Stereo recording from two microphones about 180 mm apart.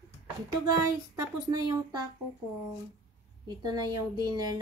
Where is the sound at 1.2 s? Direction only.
20° right (ahead or behind).